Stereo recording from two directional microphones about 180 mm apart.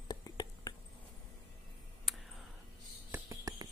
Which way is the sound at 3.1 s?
20° right (ahead or behind).